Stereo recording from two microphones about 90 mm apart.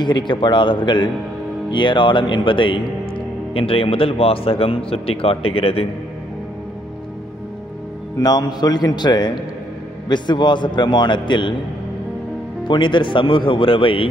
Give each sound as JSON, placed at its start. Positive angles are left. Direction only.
{"t": 0.0, "sound": "a man's voice", "side_deg": 60}
{"t": 3.5, "sound": "speech", "side_deg": 90}
{"t": 8.2, "sound": "a man's voice", "side_deg": 50}
{"t": 12.6, "sound": "a man's voice", "side_deg": 60}